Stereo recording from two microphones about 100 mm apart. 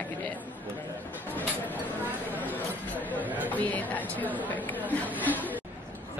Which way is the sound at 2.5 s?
15° left (ahead or behind).